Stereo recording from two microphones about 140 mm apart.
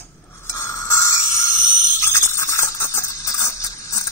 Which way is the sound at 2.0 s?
20° left (ahead or behind).